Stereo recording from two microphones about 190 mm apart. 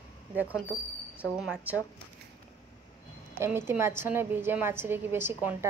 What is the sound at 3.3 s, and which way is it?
A woman's voice, 15° right (ahead or behind).